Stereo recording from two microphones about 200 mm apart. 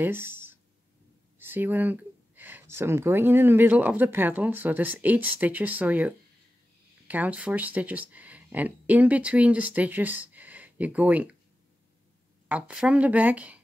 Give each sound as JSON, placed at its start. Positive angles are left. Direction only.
{"t": 0.0, "sound": "speech", "side_deg": -10}
{"t": 12.4, "sound": "speech", "side_deg": -5}